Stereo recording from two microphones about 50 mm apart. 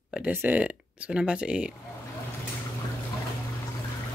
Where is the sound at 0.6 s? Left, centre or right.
Right.